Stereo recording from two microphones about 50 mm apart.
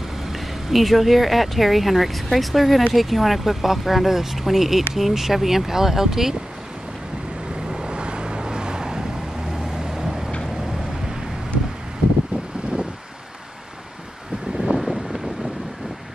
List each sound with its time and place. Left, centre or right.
0.3 s speech: centre
7.7 s vehicle: centre
14.6 s wind noise: centre